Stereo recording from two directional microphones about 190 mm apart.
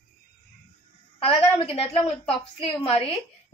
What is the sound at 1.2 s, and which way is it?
A woman's voice, 30° left (ahead or behind).